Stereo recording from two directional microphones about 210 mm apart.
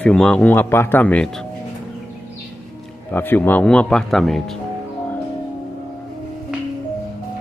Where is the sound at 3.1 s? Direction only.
10° left (ahead or behind).